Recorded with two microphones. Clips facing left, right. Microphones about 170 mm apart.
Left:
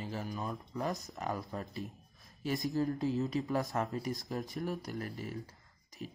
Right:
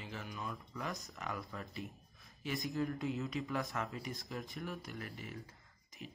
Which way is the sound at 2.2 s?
40° left (ahead or behind).